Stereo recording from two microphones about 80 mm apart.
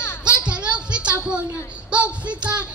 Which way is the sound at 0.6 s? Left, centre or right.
Centre.